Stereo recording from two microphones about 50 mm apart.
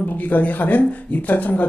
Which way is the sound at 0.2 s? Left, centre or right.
Left.